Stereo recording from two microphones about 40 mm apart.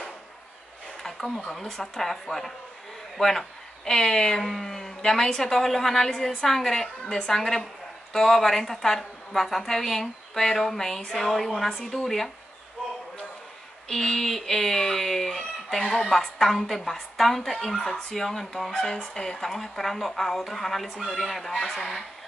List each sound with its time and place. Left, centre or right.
1.0 s a sound: centre
1.5 s speech: centre
7.1 s speech: centre
7.3 s speech: centre
11.0 s speech: centre
11.2 s speech: centre
13.8 s speech: centre
15.8 s speech: centre
18.8 s speech: left
19.4 s speech: centre